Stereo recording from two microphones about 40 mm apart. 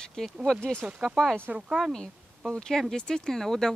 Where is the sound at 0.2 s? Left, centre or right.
Centre.